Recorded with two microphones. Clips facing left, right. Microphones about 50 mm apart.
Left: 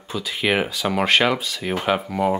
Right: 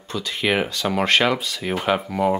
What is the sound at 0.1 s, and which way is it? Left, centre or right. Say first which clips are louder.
Speech: even; centre.